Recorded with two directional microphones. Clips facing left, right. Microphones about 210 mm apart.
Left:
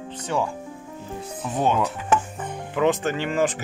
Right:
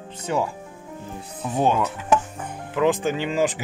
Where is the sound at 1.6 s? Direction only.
5° right (ahead or behind).